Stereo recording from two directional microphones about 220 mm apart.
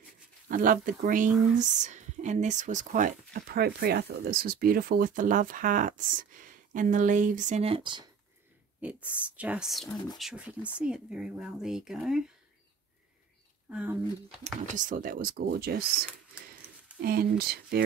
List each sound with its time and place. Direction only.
0.5 s speech: 40° right (ahead or behind); by 8.1 s 20° right (ahead or behind)
8.8 s speech: 5° right (ahead or behind)
13.7 s speech: 5° right (ahead or behind)
14.4 s speech: 35° right (ahead or behind)